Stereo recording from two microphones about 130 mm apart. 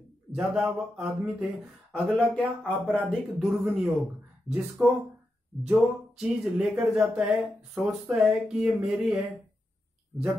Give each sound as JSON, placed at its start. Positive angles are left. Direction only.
{"t": 0.4, "sound": "speech", "side_deg": -5}